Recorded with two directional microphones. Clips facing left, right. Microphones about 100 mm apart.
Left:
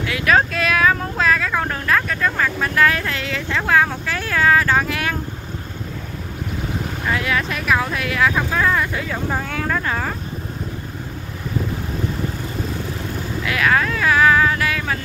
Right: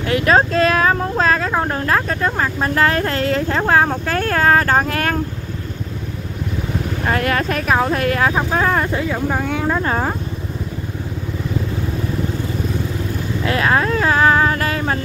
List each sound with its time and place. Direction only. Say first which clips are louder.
0.0 s a sound: right 3 dB; 35° right (ahead or behind)
1.6 s speech: right 2 dB; 30° right (ahead or behind)
7.1 s speech: right 3 dB; 50° right (ahead or behind)
9.1 s speech: right 4 dB; 5° right (ahead or behind)
9.6 s speech: right 3 dB; 20° right (ahead or behind)
13.4 s speech: right 2 dB; 30° right (ahead or behind)